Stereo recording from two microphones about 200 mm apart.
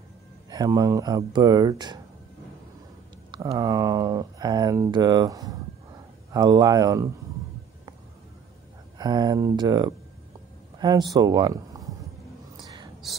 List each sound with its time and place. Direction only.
0.5 s speech: 20° right (ahead or behind)
3.3 s speech: 20° right (ahead or behind)
8.9 s speech: 20° right (ahead or behind)
12.5 s whispering: 20° right (ahead or behind)